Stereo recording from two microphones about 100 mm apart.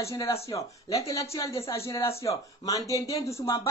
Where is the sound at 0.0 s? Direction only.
30° left (ahead or behind).